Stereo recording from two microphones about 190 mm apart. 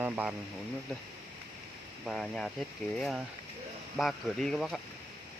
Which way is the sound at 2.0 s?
Centre (ahead or behind).